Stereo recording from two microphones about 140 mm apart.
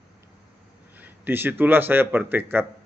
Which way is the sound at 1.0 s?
15° right (ahead or behind).